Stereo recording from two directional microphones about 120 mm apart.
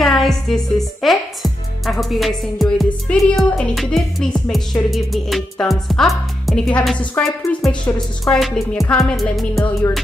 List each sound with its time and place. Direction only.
0.0 s speech: 5° left (ahead or behind)
3.5 s music: 5° left (ahead or behind)